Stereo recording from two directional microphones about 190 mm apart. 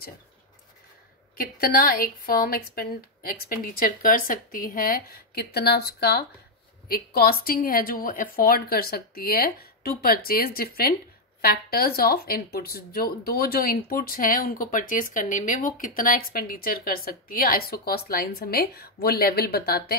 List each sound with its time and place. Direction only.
1.3 s speech: 50° left (ahead or behind)